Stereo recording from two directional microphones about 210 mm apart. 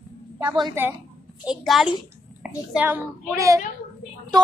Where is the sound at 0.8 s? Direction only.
10° right (ahead or behind).